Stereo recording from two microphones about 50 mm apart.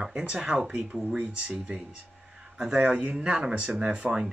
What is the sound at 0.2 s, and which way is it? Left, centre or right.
Speech, centre.